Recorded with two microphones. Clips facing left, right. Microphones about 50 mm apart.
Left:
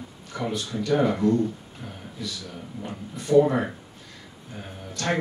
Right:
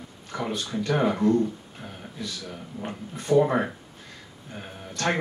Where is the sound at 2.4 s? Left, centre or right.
Right.